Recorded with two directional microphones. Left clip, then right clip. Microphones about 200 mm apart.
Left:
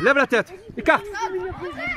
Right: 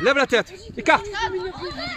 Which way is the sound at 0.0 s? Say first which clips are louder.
Left 1 dB; 50° left (ahead or behind).